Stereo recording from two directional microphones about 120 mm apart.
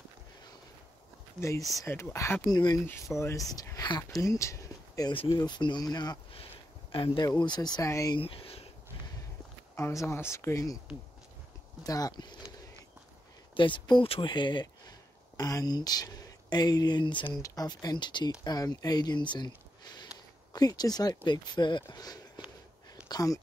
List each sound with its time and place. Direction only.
1.8 s speech: 25° left (ahead or behind)
4.2 s a sound: 25° left (ahead or behind)
5.3 s speech: 35° left (ahead or behind)
8.2 s speech: 50° left (ahead or behind)
9.8 s speech: 20° left (ahead or behind)
11.8 s speech: 30° left (ahead or behind)
13.6 s speech: 45° left (ahead or behind)